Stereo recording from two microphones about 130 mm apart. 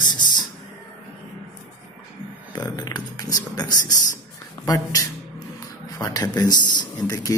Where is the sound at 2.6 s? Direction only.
30° left (ahead or behind).